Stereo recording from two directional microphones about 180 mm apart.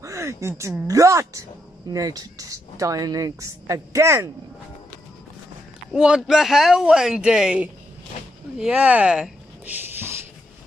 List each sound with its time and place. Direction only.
0.0 s speech: 15° right (ahead or behind)
5.9 s speech: 5° right (ahead or behind)